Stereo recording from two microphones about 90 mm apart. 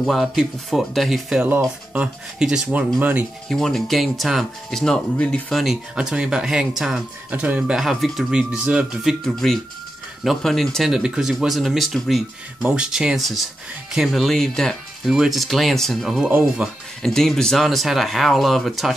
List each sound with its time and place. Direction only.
0.0 s speech: centre (ahead or behind)
3.0 s speech: 20° right (ahead or behind)
3.4 s speech: 5° left (ahead or behind)
5.5 s speech: centre (ahead or behind)
7.2 s speech: 15° right (ahead or behind)
7.7 s speech: centre (ahead or behind)
9.2 s speech: 5° left (ahead or behind)
16.3 s speech: 15° right (ahead or behind)
16.6 s speech: 5° left (ahead or behind)